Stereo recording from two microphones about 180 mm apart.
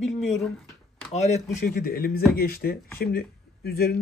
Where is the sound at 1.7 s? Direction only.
55° left (ahead or behind).